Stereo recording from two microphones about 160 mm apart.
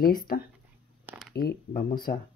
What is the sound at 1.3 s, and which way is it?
Speech, 80° left.